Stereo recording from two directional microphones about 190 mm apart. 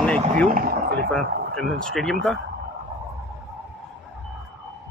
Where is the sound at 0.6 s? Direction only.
50° right (ahead or behind).